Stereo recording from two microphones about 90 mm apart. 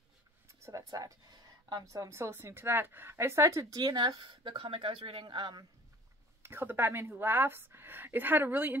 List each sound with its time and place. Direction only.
0.5 s speech: 35° right (ahead or behind); by 5.2 s 80° right
5.3 s speech: 60° right (ahead or behind)
6.4 s a woman's voice: 25° right (ahead or behind)